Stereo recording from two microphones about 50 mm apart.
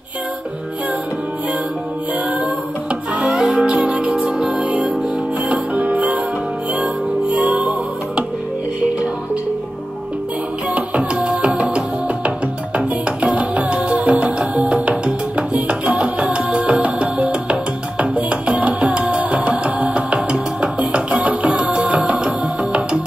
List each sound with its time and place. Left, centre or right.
3.2 s music: centre
5.5 s music: right
10.7 s music: right